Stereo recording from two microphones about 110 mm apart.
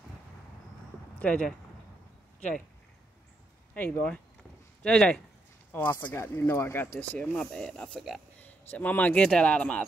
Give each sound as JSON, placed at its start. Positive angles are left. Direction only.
{"t": 1.2, "sound": "speech", "side_deg": 10}
{"t": 3.7, "sound": "speech", "side_deg": 15}